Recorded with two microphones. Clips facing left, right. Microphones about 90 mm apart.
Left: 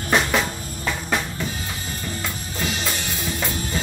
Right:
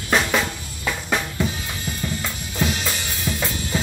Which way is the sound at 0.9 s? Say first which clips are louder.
Right 1 dB; centre (ahead or behind).